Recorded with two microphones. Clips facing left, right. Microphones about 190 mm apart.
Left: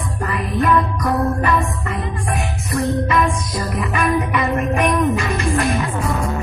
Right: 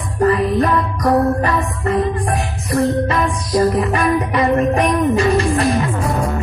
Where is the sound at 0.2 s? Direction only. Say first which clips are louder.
Right 7 dB; 35° right (ahead or behind).